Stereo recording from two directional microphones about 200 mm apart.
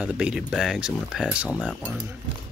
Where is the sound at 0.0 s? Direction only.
5° right (ahead or behind).